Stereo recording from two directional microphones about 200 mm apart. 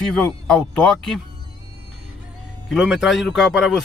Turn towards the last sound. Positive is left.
turn(degrees=0)  # may be behind; listen again after turning